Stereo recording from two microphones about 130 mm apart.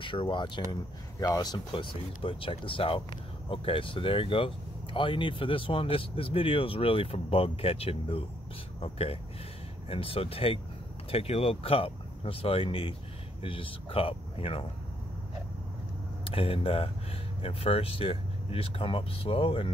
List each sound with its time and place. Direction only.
0.0 s speech: 40° left (ahead or behind)
16.3 s speech: 45° left (ahead or behind)